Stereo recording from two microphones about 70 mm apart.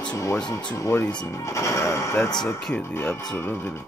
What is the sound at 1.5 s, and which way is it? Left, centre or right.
Music, left.